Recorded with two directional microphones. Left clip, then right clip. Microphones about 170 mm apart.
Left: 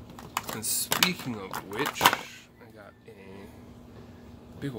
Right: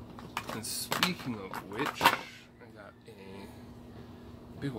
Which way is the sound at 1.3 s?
30° left (ahead or behind).